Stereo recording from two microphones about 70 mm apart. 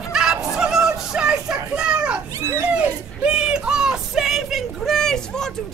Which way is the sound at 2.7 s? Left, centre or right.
Centre.